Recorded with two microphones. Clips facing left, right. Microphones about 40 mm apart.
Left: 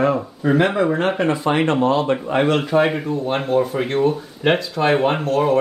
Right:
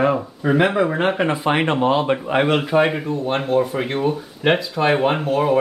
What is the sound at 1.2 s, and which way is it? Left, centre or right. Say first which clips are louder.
Speech: left 1 dB; centre.